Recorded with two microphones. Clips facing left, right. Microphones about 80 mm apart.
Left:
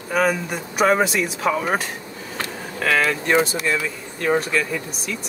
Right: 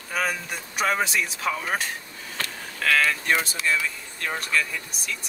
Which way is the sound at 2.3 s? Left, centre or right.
Centre.